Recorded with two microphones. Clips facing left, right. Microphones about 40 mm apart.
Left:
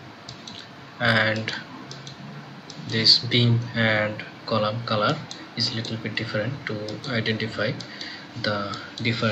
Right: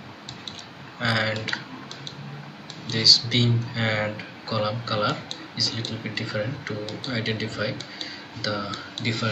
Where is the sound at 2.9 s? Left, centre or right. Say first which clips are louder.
Even; centre.